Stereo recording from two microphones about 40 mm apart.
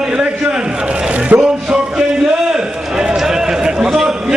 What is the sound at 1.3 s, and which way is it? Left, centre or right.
Speech, right.